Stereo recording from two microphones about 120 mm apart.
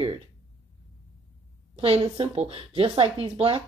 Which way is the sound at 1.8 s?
55° right (ahead or behind).